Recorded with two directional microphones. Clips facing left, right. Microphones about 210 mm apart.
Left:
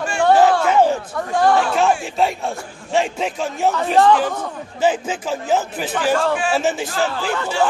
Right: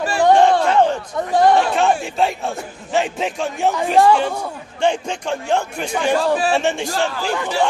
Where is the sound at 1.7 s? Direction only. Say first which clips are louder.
Even; centre (ahead or behind).